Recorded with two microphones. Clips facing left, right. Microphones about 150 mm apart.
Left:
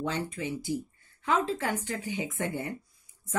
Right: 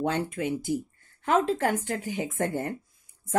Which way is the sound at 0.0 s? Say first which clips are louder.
Right 5 dB; 55° right (ahead or behind).